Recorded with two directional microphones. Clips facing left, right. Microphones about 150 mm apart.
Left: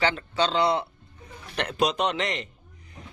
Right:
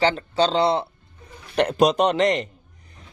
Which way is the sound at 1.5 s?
45° right (ahead or behind).